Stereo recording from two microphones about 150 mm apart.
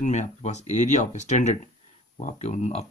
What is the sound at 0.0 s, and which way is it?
Speech, 50° left (ahead or behind).